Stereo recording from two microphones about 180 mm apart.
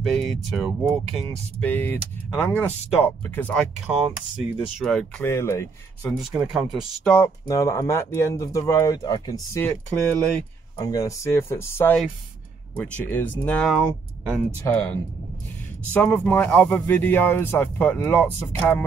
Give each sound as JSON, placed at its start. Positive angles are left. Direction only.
{"t": 0.0, "sound": "speech", "side_deg": 0}
{"t": 1.6, "sound": "speech", "side_deg": 10}
{"t": 3.8, "sound": "speech", "side_deg": -5}
{"t": 5.2, "sound": "speech", "side_deg": 15}
{"t": 6.5, "sound": "speech", "side_deg": 0}
{"t": 7.2, "sound": "speech", "side_deg": 20}
{"t": 9.7, "sound": "speech", "side_deg": 5}
{"t": 10.8, "sound": "speech", "side_deg": 20}
{"t": 13.7, "sound": "speech", "side_deg": -5}
{"t": 14.7, "sound": "speech", "side_deg": 20}